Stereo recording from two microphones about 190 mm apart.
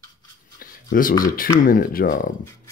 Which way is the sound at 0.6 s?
45° left (ahead or behind).